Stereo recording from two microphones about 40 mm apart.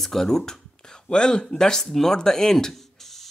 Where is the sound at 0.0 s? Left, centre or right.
Centre.